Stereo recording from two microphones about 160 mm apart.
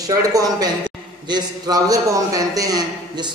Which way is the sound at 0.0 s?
20° right (ahead or behind).